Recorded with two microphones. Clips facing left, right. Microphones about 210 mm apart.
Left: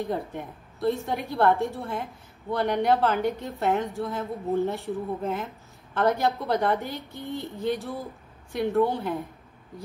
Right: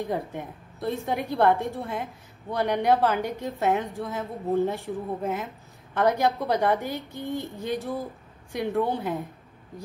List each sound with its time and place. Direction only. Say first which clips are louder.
0.0 s a woman's voice: even; 15° right (ahead or behind)
7.2 s a sound: right 2 dB; 50° right (ahead or behind)
8.5 s a woman's voice: left 2 dB; 15° right (ahead or behind)